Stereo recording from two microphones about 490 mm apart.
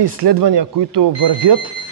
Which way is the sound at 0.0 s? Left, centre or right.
Right.